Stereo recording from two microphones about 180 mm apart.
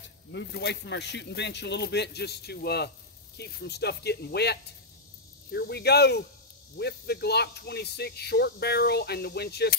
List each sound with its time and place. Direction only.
0.3 s speech: 70° left (ahead or behind)